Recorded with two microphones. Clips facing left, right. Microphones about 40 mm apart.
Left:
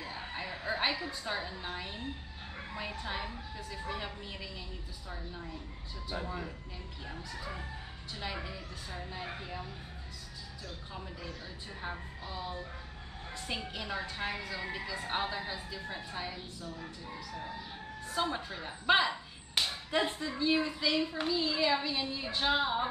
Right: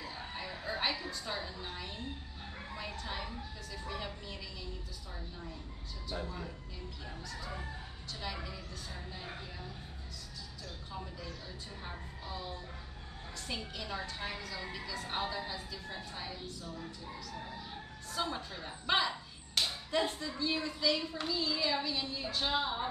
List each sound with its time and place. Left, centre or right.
0.0 s a sound: left
2.7 s speech: centre
6.0 s speech: centre
11.8 s speech: left
13.5 s speech: left
16.8 s fowl: centre
18.0 s speech: centre